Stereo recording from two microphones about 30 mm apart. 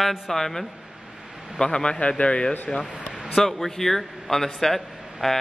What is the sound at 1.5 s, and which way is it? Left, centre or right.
Speech, left.